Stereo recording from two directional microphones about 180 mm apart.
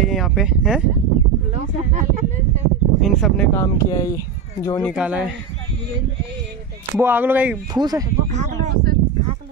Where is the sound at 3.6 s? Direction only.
15° left (ahead or behind).